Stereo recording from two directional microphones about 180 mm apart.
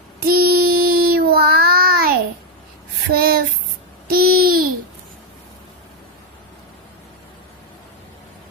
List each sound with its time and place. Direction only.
0.2 s child singing: 55° right (ahead or behind)
3.1 s a sound: 55° right (ahead or behind)
4.1 s babbling: 55° right (ahead or behind)